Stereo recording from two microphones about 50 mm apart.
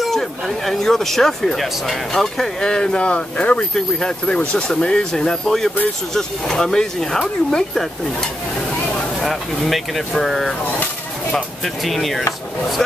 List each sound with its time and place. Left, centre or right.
0.0 s speech: centre